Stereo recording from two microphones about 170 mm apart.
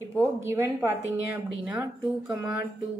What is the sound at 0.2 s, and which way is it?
A woman's voice, 15° right (ahead or behind).